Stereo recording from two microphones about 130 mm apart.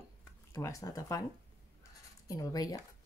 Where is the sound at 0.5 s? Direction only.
25° left (ahead or behind).